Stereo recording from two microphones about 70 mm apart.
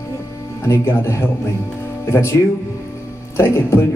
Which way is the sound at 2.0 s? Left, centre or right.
Left.